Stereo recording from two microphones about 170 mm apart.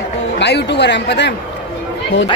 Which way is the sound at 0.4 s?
85° left.